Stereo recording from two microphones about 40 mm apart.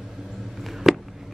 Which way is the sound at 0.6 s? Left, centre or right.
Centre.